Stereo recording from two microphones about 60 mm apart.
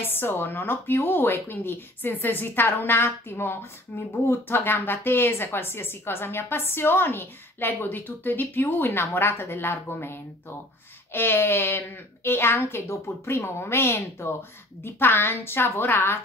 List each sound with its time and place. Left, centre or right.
0.1 s a woman's voice: left
11.1 s a woman's voice: left